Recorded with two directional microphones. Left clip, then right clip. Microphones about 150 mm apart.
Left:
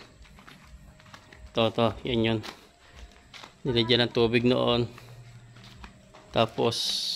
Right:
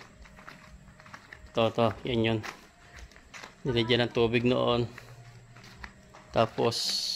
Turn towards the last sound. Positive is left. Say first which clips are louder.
# left 1 dB
turn(degrees=0)  # may be behind; listen again after turning